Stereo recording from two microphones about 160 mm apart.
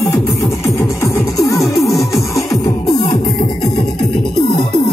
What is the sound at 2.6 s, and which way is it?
Music, 20° left (ahead or behind).